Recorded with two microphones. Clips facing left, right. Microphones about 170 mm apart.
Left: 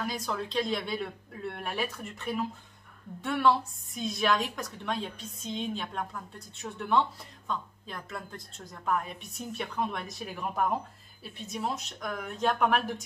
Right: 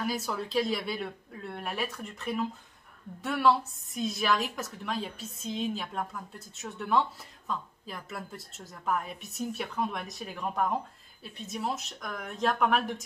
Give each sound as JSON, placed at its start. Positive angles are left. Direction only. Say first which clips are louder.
{"t": 0.0, "sound": "a woman's voice", "louder": "right 1 dB", "side_deg": -5}